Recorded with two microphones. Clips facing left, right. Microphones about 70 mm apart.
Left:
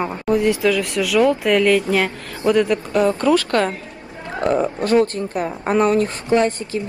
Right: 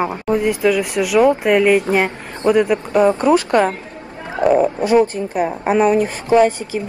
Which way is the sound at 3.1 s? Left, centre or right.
Right.